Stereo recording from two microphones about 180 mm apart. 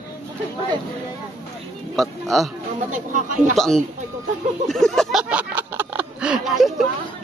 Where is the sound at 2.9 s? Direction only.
45° right (ahead or behind).